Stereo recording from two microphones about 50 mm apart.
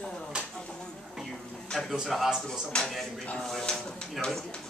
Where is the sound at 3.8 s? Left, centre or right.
Centre.